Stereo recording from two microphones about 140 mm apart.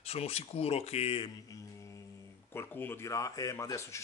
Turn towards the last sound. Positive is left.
turn(degrees=20)  # may be behind; listen again after turning